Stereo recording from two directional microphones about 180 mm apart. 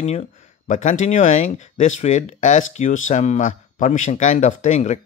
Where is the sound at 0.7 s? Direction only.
45° left (ahead or behind).